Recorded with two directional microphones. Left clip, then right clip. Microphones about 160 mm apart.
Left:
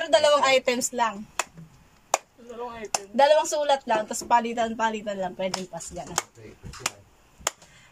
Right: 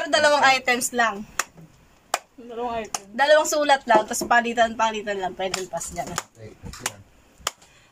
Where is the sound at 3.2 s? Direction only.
20° left (ahead or behind).